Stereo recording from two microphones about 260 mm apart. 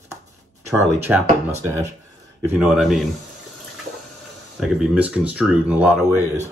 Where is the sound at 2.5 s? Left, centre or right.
Centre.